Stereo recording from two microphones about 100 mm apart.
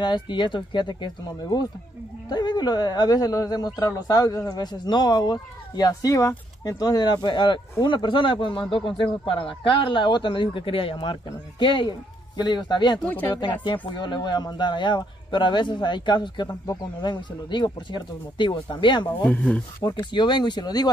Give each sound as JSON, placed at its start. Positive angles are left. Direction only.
{"t": 0.0, "sound": "speech", "side_deg": 50}